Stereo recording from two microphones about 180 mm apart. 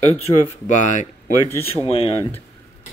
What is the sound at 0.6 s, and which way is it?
Speech, 45° left (ahead or behind).